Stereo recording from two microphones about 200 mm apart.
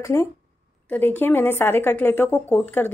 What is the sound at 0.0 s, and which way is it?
Speech, 15° left (ahead or behind).